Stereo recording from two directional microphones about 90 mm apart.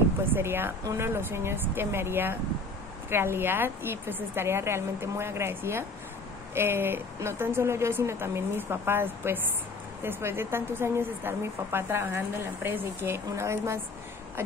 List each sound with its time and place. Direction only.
0.3 s speech: 25° right (ahead or behind)